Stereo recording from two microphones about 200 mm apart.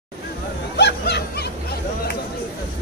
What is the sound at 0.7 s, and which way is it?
Snicker, 55° left (ahead or behind).